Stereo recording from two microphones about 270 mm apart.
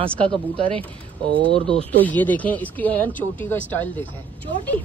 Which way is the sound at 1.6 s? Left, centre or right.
Centre.